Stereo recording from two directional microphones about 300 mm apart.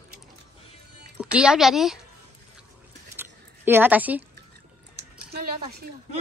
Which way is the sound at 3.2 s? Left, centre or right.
Centre.